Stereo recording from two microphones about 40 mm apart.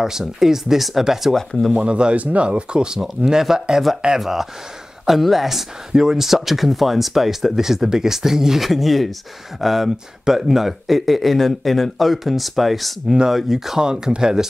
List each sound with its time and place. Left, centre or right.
0.0 s speech: centre
1.3 s speech: centre
1.7 s speech: right; by 13.7 s centre
13.7 s speech: centre